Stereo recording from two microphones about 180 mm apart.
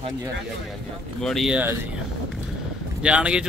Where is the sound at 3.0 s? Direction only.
5° right (ahead or behind).